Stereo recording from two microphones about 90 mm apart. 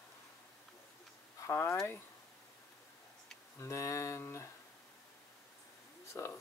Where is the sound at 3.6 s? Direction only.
35° left (ahead or behind).